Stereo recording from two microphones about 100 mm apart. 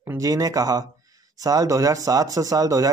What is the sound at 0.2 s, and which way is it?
Speech, 35° right (ahead or behind).